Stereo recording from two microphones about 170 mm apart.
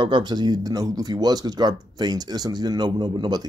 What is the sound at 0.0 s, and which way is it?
Speech, 25° right (ahead or behind).